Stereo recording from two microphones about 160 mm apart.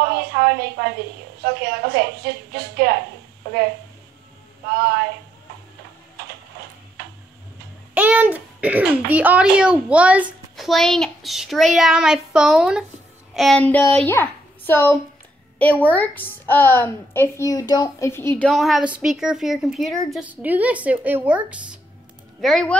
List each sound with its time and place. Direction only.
0.0 s a woman's voice: 80° right
4.7 s a woman's voice: 85° right
7.9 s a child's voice: 10° right (ahead or behind); by 18.3 s 15° left (ahead or behind)
18.4 s a child's voice: centre (ahead or behind)